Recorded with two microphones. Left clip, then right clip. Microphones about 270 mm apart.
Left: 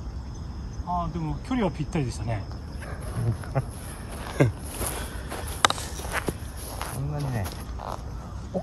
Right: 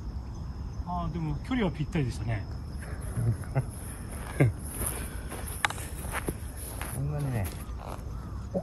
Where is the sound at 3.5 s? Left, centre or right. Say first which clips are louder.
Left 5 dB; centre.